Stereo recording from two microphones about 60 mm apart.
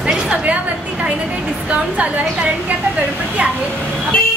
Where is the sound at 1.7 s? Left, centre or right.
Right.